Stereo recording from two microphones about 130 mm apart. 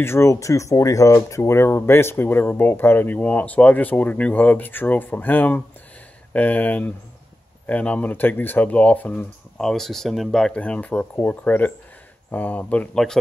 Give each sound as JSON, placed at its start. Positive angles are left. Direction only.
{"t": 0.0, "sound": "speech", "side_deg": 20}